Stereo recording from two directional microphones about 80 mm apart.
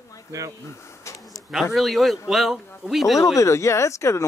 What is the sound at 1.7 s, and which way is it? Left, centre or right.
A man's voice, centre.